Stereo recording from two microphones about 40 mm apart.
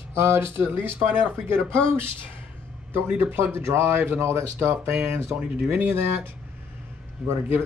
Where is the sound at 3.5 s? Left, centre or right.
Right.